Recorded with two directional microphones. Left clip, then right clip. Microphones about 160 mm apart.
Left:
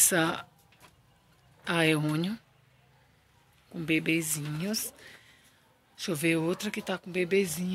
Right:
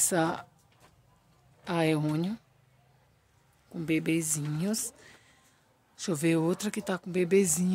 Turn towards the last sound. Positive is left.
turn(degrees=-65)  # may be behind; listen again after turning